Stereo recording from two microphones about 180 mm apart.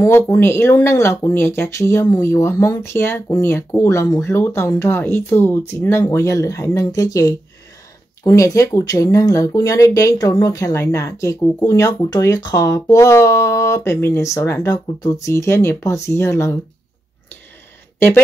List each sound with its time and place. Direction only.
0.0 s speech: 15° left (ahead or behind)
17.9 s speech: 10° left (ahead or behind)